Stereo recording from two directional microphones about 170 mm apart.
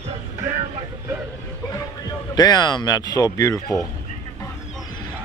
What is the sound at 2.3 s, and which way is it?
Speech, 25° left (ahead or behind).